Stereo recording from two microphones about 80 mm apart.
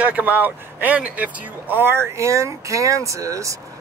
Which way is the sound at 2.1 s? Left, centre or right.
Right.